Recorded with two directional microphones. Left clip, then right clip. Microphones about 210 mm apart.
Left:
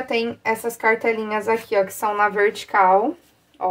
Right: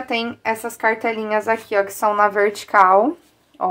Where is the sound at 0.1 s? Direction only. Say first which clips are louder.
Right 1 dB; 35° right (ahead or behind).